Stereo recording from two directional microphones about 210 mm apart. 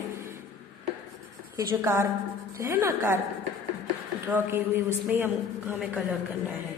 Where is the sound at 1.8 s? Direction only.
10° right (ahead or behind).